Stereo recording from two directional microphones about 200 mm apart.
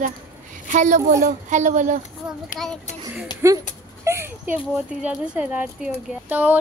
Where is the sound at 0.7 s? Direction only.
40° right (ahead or behind).